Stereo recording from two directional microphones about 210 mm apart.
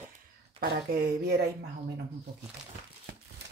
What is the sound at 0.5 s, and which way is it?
Speech, 45° right (ahead or behind).